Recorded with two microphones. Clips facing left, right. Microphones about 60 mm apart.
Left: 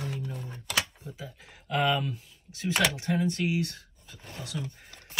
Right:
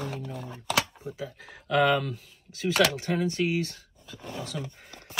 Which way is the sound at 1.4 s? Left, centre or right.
Right.